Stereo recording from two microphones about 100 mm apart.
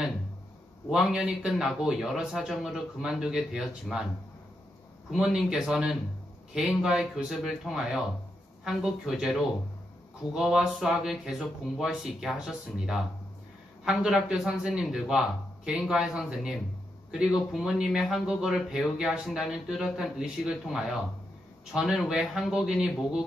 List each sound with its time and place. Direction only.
0.8 s speech: 5° right (ahead or behind)
5.1 s speech: 5° right (ahead or behind)